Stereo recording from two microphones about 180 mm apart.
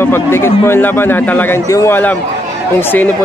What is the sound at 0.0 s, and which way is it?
A man's voice, 15° left (ahead or behind).